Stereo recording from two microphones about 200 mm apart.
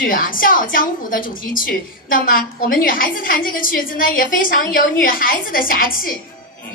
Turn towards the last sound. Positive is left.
turn(degrees=45)  # may be behind; listen again after turning